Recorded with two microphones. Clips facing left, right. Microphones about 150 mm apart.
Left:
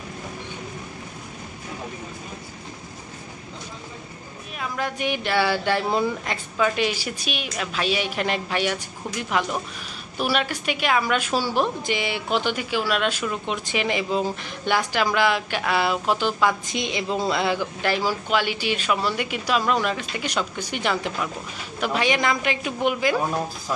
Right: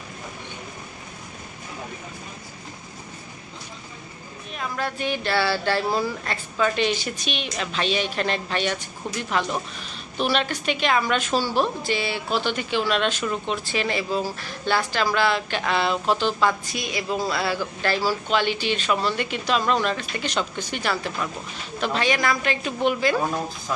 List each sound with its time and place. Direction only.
4.6 s speech: 15° left (ahead or behind)
6.6 s speech: 10° left (ahead or behind)
16.7 s speech: 20° left (ahead or behind)